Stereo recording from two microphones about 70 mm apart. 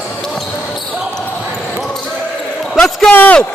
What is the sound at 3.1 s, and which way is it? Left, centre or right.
Speech, left.